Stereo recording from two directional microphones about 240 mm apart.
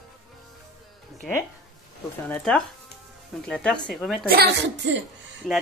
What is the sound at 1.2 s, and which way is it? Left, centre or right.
Speech, centre.